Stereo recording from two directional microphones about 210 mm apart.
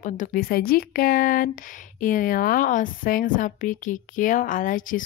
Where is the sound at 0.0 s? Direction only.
40° left (ahead or behind).